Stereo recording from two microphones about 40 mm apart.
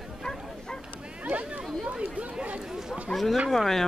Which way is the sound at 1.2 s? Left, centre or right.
Right.